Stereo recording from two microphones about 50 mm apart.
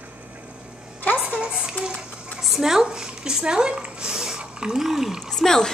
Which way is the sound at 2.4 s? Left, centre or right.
Centre.